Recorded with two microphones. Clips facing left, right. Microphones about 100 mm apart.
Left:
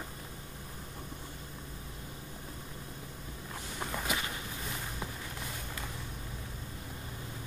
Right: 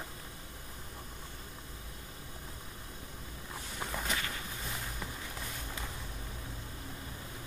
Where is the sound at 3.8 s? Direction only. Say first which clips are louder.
Left 2 dB; 5° left (ahead or behind).